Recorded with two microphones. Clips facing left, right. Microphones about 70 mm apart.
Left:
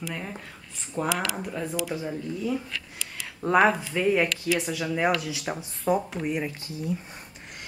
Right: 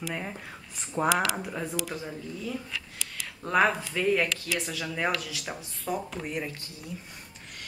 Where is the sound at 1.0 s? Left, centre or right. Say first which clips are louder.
Right 2 dB; right.